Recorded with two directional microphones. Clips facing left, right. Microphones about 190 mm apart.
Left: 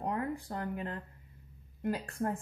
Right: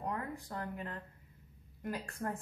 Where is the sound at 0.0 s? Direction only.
30° left (ahead or behind).